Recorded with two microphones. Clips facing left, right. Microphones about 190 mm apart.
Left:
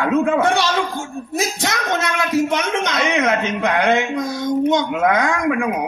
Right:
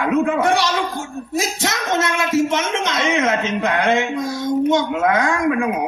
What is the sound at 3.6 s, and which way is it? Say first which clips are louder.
A woman's voice: even; 20° left (ahead or behind).